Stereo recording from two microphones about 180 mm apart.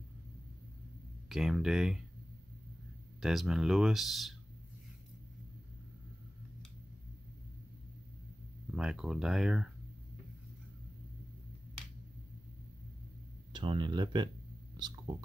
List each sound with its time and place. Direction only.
1.3 s speech: centre (ahead or behind)
3.2 s speech: centre (ahead or behind)
8.7 s speech: 5° right (ahead or behind)
13.5 s speech: 25° right (ahead or behind)